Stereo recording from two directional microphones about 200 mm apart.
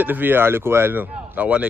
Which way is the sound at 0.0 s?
10° right (ahead or behind).